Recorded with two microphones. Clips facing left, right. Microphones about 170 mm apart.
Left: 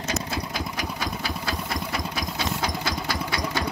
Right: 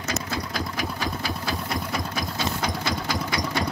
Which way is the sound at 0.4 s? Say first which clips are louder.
Right 1 dB; 15° left (ahead or behind).